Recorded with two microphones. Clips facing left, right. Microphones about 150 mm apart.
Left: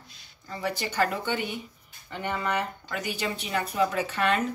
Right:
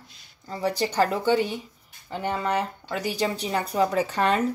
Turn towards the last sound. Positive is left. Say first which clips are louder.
# right 3 dB
turn(degrees=-35)  # may be behind; listen again after turning